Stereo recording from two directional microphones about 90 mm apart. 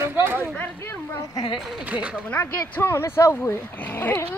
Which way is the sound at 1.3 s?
60° left (ahead or behind).